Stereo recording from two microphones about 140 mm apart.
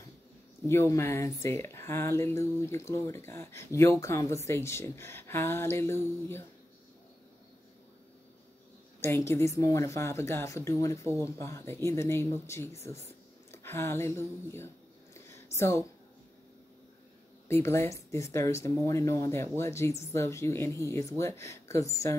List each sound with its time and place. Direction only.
0.7 s speech: 20° left (ahead or behind)
9.0 s a woman's voice: 20° left (ahead or behind)
15.1 s a sound: 20° left (ahead or behind)
17.5 s speech: 20° left (ahead or behind)